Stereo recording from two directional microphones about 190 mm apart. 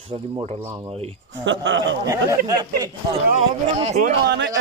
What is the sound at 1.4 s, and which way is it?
Speech, 75° right (ahead or behind).